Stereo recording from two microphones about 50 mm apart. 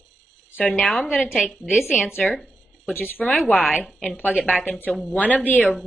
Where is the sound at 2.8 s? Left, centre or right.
Left.